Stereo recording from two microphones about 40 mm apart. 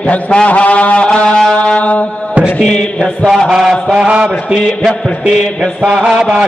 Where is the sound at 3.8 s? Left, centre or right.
Right.